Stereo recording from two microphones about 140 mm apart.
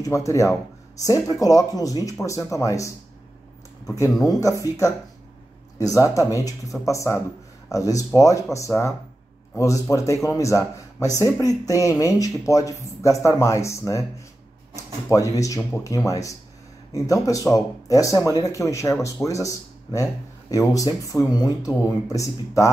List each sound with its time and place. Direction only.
0.0 s speech: 20° left (ahead or behind)
4.3 s speech: 25° left (ahead or behind)
5.8 s speech: 25° left (ahead or behind)
15.0 s speech: 25° left (ahead or behind)